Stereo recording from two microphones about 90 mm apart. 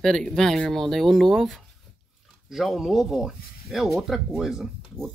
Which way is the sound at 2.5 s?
5° right (ahead or behind).